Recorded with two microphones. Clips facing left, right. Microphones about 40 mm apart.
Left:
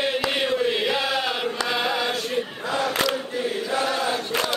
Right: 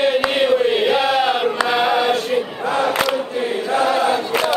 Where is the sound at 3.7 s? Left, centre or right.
Right.